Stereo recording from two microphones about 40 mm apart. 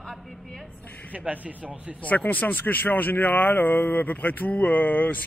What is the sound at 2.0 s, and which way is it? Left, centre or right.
Speech, left.